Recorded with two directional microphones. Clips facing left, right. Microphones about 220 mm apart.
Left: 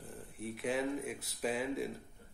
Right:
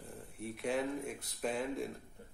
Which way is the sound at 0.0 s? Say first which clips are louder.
Left 1 dB; centre (ahead or behind).